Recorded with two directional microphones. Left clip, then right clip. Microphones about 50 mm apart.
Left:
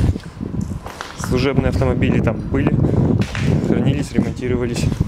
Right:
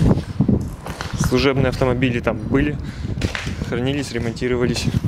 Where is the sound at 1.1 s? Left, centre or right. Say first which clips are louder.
Right 1 dB; right.